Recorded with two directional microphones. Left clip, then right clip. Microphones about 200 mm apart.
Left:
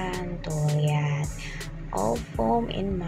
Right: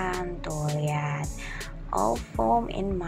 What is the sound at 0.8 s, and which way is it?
Speech, 20° right (ahead or behind).